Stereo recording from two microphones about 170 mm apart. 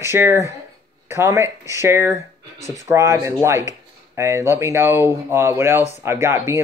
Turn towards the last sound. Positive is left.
turn(degrees=-15)  # may be behind; listen again after turning